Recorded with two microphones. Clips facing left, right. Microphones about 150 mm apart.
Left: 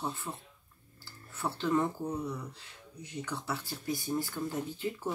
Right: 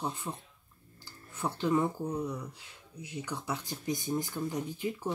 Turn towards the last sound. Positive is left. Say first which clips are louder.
# right 1 dB
turn(degrees=-15)  # may be behind; listen again after turning